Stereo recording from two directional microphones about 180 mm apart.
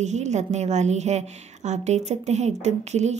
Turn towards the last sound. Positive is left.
turn(degrees=-40)  # may be behind; listen again after turning